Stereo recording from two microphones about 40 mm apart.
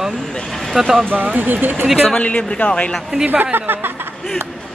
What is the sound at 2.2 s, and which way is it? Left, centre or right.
Speech, left.